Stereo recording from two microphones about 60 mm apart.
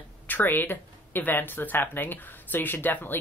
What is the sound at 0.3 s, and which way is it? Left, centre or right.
Speech, left.